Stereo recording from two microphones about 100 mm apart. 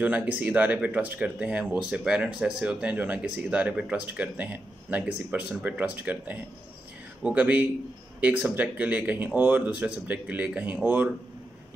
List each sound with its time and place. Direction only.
0.0 s speech: 15° right (ahead or behind)